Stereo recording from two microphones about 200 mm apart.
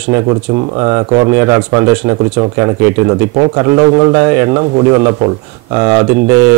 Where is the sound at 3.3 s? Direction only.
25° right (ahead or behind).